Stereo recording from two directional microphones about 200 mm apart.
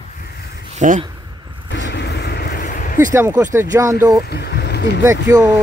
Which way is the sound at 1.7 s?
55° left (ahead or behind).